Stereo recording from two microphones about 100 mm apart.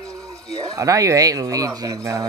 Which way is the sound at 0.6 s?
35° right (ahead or behind).